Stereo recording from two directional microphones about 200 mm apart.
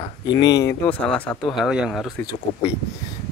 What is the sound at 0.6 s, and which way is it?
Speech, 10° left (ahead or behind).